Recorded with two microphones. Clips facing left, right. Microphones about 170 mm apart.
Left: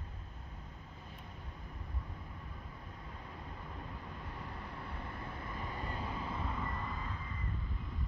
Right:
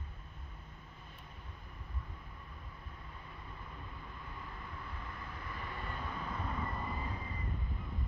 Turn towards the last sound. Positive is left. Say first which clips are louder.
# right 2 dB
turn(degrees=-10)  # may be behind; listen again after turning